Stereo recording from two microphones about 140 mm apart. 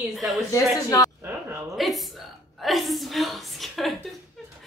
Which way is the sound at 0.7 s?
25° left (ahead or behind).